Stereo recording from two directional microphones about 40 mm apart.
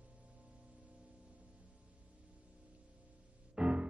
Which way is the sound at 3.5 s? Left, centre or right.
Right.